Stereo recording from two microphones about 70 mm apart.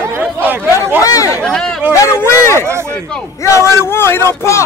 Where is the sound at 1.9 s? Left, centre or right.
Left.